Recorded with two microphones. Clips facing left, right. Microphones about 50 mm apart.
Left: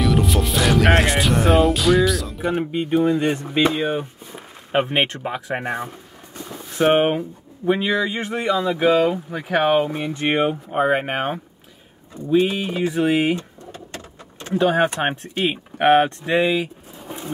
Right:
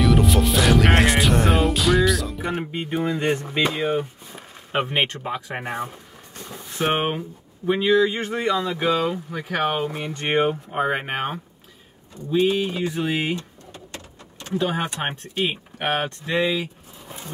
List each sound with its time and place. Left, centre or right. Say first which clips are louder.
0.0 s music: right 1 dB; centre
4.7 s speech: left 3 dB; centre
9.8 s speech: left 4 dB; centre
12.3 s speech: left 2 dB; left
13.9 s keys jangling: left 3 dB; left
15.0 s speech: left 3 dB; left